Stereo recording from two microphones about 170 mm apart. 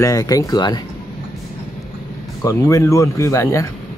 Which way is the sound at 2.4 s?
20° left (ahead or behind).